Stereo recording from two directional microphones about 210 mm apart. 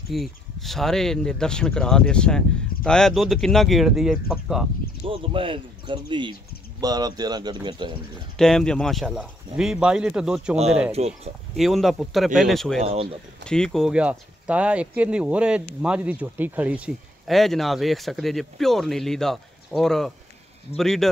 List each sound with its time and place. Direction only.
0.1 s speech: centre (ahead or behind)
5.0 s speech: 25° right (ahead or behind)
8.4 s speech: 5° left (ahead or behind)
10.9 s speech: 30° right (ahead or behind)
11.5 s speech: centre (ahead or behind)
12.8 s speech: 30° right (ahead or behind)
13.4 s speech: 5° left (ahead or behind)